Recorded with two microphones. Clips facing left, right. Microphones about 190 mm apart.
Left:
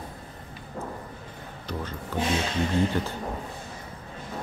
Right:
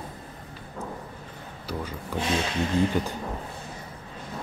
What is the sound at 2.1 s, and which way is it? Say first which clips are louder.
Speech: left 2 dB; 10° right (ahead or behind).